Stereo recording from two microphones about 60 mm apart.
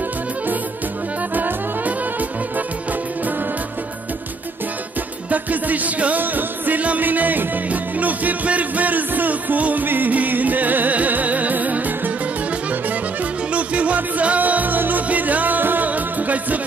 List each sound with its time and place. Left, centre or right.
1.3 s music: right
5.3 s music: right
13.5 s music: right